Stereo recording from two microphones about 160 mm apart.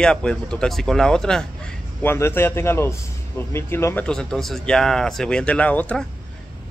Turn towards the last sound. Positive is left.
turn(degrees=10)  # may be behind; listen again after turning